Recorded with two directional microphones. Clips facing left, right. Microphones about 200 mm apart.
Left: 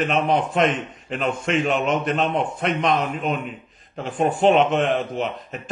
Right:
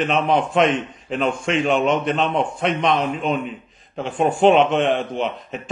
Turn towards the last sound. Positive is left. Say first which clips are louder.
# right 2 dB
turn(degrees=0)  # may be behind; listen again after turning